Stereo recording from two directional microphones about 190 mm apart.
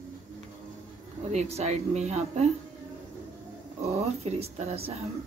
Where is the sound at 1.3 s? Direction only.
35° right (ahead or behind).